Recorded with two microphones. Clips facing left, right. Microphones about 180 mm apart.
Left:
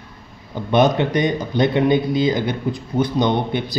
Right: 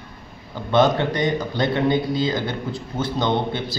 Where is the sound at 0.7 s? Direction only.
20° left (ahead or behind).